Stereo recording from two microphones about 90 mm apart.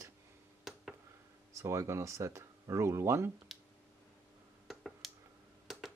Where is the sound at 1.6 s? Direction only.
30° right (ahead or behind).